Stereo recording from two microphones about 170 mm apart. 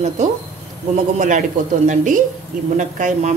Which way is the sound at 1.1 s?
50° right (ahead or behind).